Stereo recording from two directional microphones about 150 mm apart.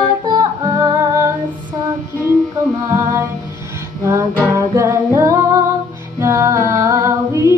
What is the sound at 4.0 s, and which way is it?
Music, 20° right (ahead or behind).